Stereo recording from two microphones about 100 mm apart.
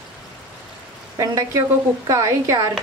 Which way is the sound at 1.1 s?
35° right (ahead or behind).